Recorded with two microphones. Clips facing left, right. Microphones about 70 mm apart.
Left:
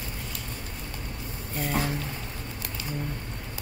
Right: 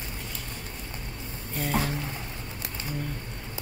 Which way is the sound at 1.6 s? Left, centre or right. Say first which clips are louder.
Even; centre.